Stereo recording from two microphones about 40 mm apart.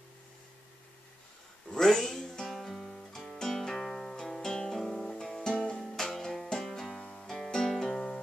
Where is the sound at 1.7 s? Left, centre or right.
Centre.